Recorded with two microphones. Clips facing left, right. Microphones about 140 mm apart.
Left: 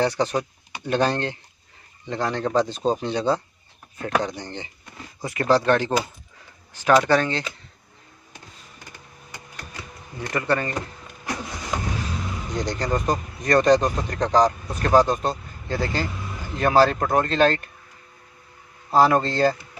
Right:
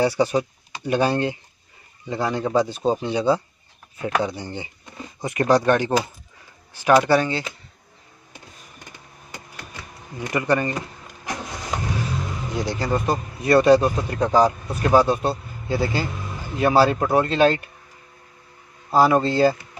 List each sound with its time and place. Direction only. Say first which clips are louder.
0.0 s speech: right 3 dB; 10° right (ahead or behind)
5.2 s speech: right 2 dB; 20° right (ahead or behind)
10.3 s speech: right 2 dB; 15° right (ahead or behind)
12.5 s speech: right 1 dB; 5° right (ahead or behind)
18.9 s speech: right 1 dB; 5° right (ahead or behind)